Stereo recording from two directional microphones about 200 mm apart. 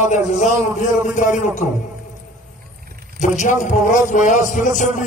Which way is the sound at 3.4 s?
35° left (ahead or behind).